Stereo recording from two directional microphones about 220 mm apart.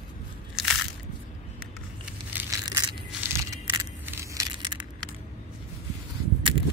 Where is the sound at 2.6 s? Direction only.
15° right (ahead or behind).